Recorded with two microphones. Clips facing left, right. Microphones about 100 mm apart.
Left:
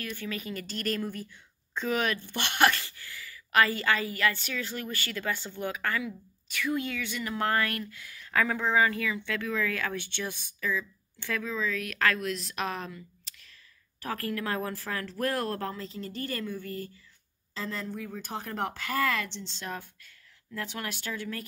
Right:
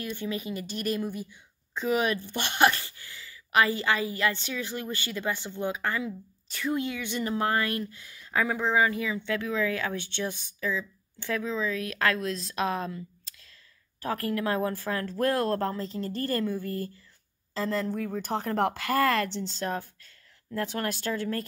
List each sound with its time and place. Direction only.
0.0 s speech: 20° right (ahead or behind)
11.8 s speech: 30° right (ahead or behind)
14.0 s speech: 25° right (ahead or behind); by 17.9 s 45° right (ahead or behind)
18.2 s speech: 60° right (ahead or behind)
18.7 s speech: 40° right (ahead or behind)